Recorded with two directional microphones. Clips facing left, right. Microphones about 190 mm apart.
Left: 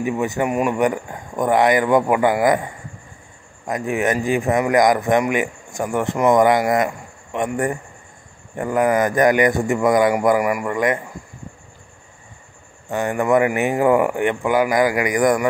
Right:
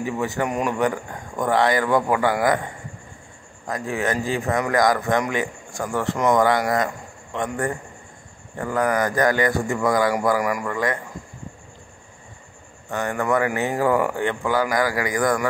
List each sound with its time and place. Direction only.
0.0 s speech: 15° left (ahead or behind)
3.6 s speech: 20° left (ahead or behind)
8.5 s speech: 20° left (ahead or behind)
12.9 s speech: 15° left (ahead or behind)